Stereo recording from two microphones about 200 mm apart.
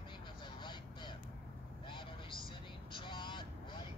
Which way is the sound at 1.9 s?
25° left (ahead or behind).